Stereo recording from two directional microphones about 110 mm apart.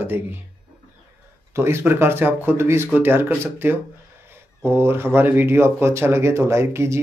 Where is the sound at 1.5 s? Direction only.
25° right (ahead or behind).